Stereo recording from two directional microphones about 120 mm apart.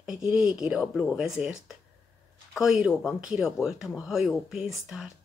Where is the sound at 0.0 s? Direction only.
5° right (ahead or behind).